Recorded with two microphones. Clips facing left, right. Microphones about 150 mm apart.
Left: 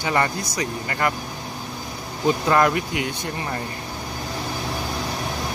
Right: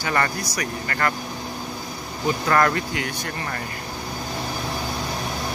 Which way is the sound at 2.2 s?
15° left (ahead or behind).